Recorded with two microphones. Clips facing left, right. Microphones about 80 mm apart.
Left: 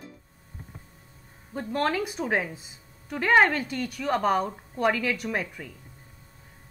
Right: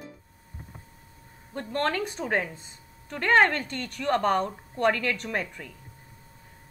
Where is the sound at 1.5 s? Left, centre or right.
Centre.